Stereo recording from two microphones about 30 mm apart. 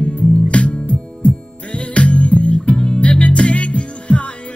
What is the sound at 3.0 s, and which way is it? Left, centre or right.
Music, left.